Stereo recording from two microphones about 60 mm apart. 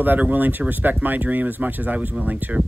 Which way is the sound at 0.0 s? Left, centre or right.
Right.